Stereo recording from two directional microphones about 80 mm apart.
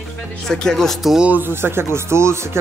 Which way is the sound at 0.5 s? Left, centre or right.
Centre.